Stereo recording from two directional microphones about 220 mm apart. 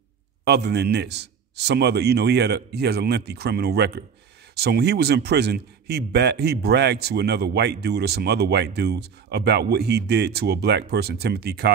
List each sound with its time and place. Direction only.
0.5 s a man's voice: 50° right (ahead or behind)